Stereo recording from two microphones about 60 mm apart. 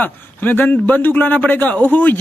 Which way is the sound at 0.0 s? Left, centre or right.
Left.